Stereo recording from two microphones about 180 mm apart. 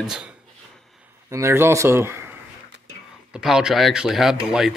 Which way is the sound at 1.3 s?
15° right (ahead or behind).